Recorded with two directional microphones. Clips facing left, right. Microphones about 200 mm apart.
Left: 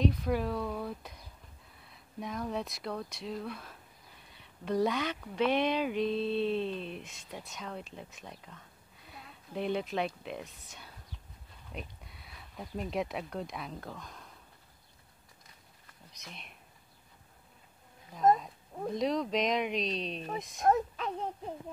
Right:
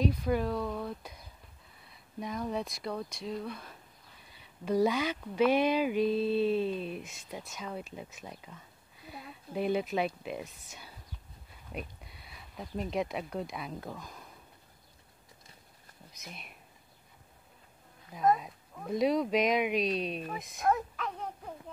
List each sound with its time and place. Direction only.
0.0 s speech: centre (ahead or behind)
16.1 s speech: 5° right (ahead or behind)
18.9 s speech: 5° right (ahead or behind)
20.2 s speech: 35° left (ahead or behind)